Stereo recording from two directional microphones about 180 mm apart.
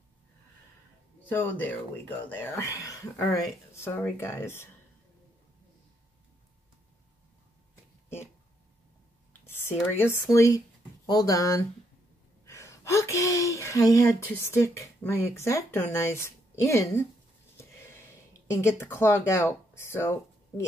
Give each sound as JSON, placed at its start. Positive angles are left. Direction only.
{"t": 1.3, "sound": "speech", "side_deg": 10}
{"t": 9.5, "sound": "speech", "side_deg": 15}
{"t": 18.5, "sound": "speech", "side_deg": 15}